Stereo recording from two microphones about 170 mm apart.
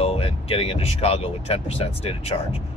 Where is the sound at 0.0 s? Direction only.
35° left (ahead or behind).